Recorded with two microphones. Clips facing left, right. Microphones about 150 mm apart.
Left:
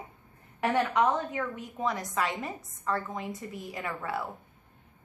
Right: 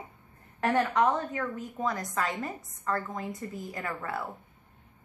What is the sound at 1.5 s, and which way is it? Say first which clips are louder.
Speech: even; 20° left (ahead or behind).